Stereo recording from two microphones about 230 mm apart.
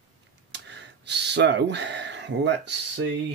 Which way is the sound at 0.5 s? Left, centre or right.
Right.